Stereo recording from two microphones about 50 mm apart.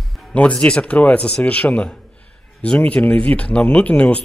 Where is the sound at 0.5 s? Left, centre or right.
Left.